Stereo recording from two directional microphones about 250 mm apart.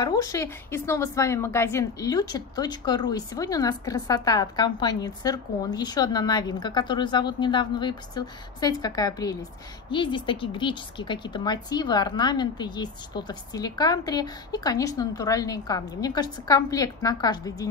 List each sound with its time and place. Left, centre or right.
0.0 s a woman's voice: centre